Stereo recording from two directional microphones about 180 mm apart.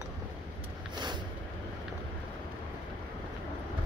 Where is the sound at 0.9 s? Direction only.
25° right (ahead or behind).